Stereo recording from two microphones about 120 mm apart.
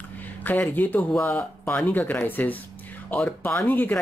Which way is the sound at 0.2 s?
15° left (ahead or behind).